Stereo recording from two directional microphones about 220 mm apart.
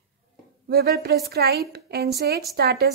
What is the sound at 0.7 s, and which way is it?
A woman's voice, 45° right (ahead or behind).